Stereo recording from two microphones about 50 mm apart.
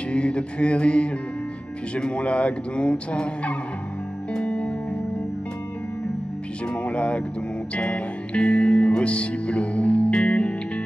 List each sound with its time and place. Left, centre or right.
0.1 s speech: left
4.3 s music: left
6.7 s speech: left